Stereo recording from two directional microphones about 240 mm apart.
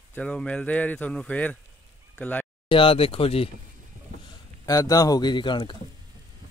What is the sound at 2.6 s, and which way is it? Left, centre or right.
Speech, left.